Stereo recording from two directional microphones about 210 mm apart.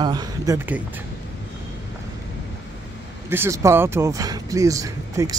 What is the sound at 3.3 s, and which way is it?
Speech, 10° right (ahead or behind).